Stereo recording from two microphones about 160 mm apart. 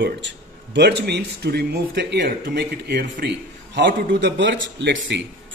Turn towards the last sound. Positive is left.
turn(degrees=-90)